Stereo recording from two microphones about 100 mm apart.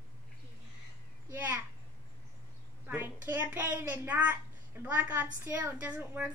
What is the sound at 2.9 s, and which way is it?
A child's voice, 20° right (ahead or behind).